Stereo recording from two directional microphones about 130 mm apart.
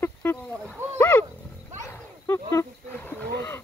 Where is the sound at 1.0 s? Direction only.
15° left (ahead or behind).